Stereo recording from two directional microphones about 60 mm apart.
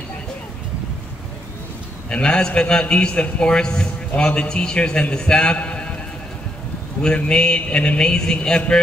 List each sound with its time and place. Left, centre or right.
2.0 s a man's voice: centre
7.0 s a man's voice: centre